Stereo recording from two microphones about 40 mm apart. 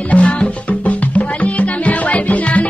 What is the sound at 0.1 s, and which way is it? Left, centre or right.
Music, left.